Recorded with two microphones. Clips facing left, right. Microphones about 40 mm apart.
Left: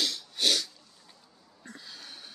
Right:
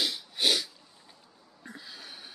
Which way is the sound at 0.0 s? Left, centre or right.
Centre.